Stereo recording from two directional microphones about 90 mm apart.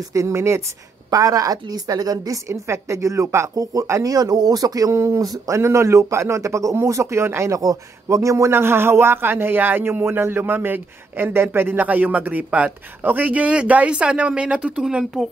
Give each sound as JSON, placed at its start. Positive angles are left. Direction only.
{"t": 0.1, "sound": "a woman's voice", "side_deg": -35}